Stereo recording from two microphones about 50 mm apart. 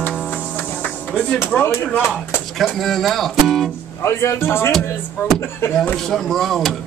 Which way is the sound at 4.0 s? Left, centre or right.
Left.